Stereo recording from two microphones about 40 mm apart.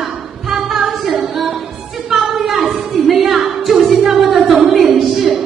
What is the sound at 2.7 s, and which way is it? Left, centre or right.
Music, centre.